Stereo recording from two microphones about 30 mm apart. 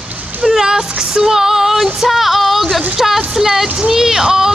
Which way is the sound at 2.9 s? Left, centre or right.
Centre.